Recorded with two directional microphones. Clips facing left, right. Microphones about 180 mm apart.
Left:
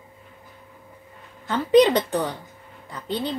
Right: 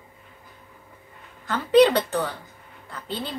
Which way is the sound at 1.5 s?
15° left (ahead or behind).